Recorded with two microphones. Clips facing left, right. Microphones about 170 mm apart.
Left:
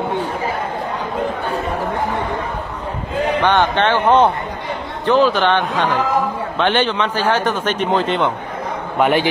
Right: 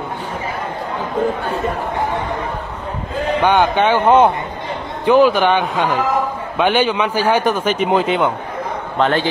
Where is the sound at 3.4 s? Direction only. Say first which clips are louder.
Right 3 dB; 10° right (ahead or behind).